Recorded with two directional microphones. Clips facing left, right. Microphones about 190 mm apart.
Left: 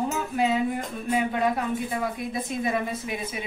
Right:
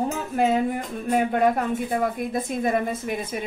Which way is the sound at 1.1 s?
50° right (ahead or behind).